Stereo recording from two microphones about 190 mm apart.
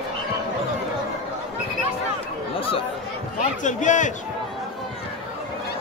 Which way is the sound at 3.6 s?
40° left (ahead or behind).